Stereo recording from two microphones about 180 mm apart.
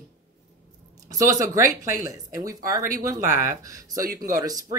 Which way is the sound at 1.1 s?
20° right (ahead or behind).